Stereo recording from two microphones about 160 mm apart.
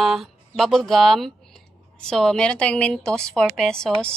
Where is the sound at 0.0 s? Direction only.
Centre (ahead or behind).